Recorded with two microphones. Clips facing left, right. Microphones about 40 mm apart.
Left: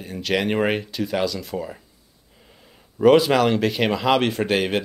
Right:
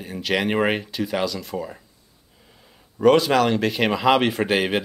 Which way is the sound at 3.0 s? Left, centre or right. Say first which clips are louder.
Left 1 dB; centre.